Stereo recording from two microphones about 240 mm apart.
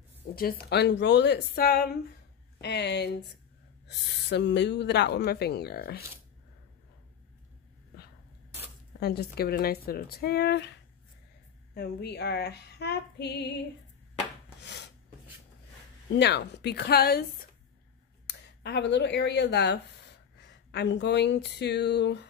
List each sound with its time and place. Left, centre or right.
0.4 s speech: left
9.0 s speech: left
14.6 s filing: left
16.2 s speech: left